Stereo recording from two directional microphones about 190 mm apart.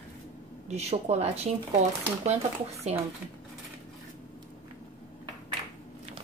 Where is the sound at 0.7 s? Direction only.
35° right (ahead or behind).